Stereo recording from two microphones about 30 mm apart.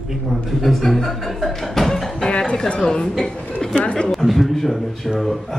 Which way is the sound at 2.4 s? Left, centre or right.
Left.